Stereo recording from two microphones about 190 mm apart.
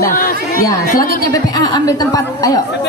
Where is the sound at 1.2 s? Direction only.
20° left (ahead or behind).